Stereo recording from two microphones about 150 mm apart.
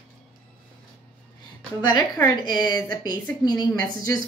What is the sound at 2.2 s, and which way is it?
Speech, 30° left (ahead or behind).